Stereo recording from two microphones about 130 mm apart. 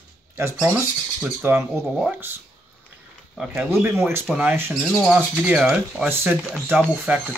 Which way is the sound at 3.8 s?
15° right (ahead or behind).